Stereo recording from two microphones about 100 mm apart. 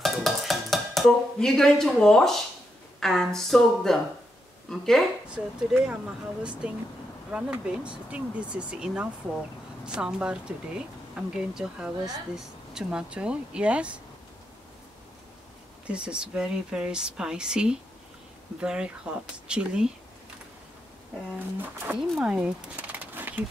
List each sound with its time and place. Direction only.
0.0 s dishes: centre (ahead or behind)
3.0 s speech: 5° left (ahead or behind)
5.3 s speech: 10° right (ahead or behind)
15.9 s speech: 10° right (ahead or behind)
21.4 s speech: 20° right (ahead or behind)